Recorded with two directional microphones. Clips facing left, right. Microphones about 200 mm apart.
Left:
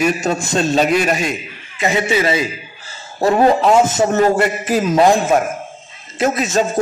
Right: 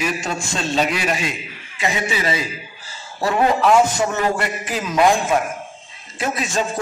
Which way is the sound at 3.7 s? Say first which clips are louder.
Left 3 dB; 20° left (ahead or behind).